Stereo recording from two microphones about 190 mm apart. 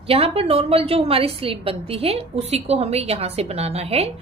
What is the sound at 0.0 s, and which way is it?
A woman's voice, 30° right (ahead or behind).